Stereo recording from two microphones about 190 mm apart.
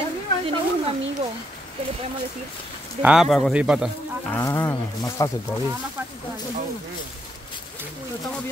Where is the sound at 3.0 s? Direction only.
5° right (ahead or behind).